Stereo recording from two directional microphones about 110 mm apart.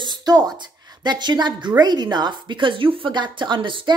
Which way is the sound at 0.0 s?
40° right (ahead or behind).